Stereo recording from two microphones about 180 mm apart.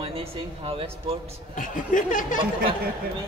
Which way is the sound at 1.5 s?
45° left (ahead or behind).